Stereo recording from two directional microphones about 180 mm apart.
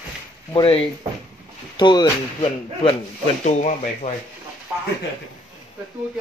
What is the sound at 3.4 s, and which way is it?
Speech, 40° left (ahead or behind).